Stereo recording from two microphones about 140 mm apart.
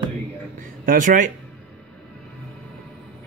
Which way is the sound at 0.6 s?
70° right (ahead or behind).